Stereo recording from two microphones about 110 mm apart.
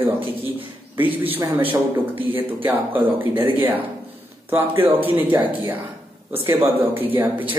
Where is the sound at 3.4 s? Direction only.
15° right (ahead or behind).